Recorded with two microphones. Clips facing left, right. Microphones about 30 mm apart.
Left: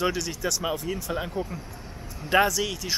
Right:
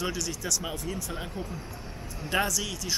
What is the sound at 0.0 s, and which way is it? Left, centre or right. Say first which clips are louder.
Speech: left 5 dB; left.